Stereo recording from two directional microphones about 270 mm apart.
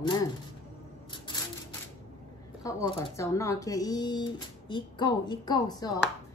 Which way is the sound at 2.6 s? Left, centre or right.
Centre.